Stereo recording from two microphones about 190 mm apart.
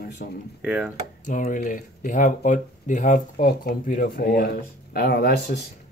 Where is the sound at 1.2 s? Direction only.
40° left (ahead or behind).